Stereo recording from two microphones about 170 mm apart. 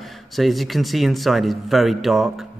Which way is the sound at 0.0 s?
Centre (ahead or behind).